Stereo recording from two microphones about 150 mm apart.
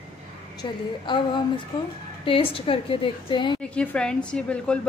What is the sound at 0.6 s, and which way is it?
Speech, 30° left (ahead or behind).